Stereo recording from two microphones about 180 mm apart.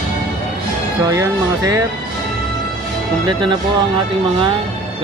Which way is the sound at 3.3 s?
25° right (ahead or behind).